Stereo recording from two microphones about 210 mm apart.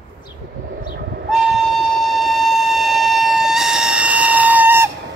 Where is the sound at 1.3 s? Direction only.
Centre (ahead or behind).